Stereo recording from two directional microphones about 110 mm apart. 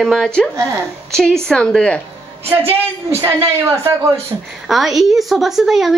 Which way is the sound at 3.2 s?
25° right (ahead or behind).